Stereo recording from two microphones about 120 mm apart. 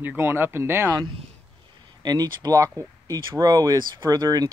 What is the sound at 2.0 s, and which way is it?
Speech, 30° right (ahead or behind).